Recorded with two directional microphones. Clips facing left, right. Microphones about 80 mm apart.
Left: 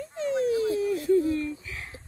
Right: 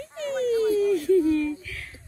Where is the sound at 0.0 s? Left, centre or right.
Left.